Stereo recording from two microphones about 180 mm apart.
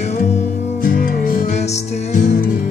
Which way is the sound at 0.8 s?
55° left (ahead or behind).